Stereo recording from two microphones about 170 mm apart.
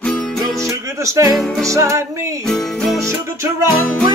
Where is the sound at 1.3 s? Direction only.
Centre (ahead or behind).